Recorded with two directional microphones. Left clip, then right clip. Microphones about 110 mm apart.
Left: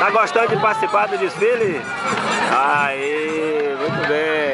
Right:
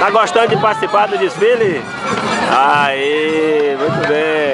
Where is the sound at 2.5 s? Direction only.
10° right (ahead or behind).